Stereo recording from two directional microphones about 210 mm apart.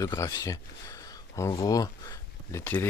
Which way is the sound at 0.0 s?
15° left (ahead or behind).